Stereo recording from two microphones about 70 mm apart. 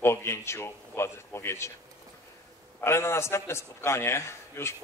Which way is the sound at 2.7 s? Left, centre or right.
Left.